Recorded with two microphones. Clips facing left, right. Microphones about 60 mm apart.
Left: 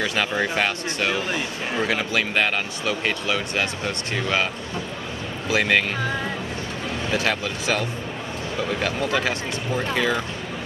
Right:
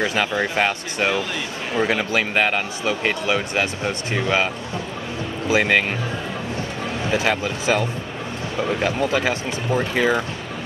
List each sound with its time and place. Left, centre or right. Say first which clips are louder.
0.0 s a man's voice: right 2 dB; centre
5.5 s speech: right 2 dB; centre
7.1 s a man's voice: right 3 dB; right